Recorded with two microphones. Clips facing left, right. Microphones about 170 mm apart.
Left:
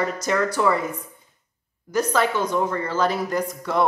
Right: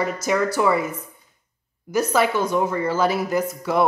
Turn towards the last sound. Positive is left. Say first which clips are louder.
# right 2 dB
turn(degrees=-5)  # may be behind; listen again after turning